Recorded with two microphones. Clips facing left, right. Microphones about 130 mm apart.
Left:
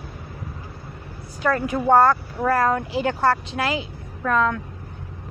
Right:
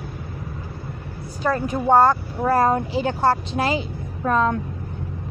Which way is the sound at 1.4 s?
20° right (ahead or behind).